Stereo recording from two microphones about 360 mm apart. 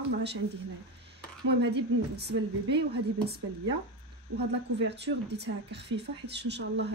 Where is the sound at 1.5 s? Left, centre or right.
Right.